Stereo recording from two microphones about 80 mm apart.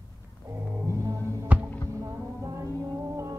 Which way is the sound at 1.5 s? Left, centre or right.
Centre.